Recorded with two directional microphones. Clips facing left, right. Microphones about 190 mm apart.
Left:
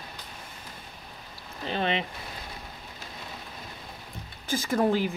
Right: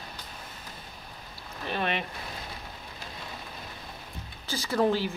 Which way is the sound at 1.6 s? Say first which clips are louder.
Left 2 dB; 25° left (ahead or behind).